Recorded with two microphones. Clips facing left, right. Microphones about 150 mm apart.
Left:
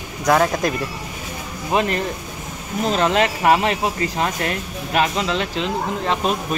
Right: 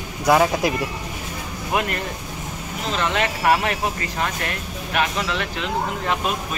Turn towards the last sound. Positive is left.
turn(degrees=30)  # may be behind; listen again after turning